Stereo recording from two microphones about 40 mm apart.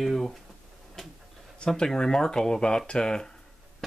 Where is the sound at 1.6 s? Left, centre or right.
Centre.